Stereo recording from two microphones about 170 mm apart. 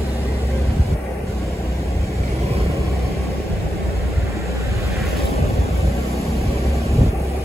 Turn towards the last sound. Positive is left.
turn(degrees=-20)  # may be behind; listen again after turning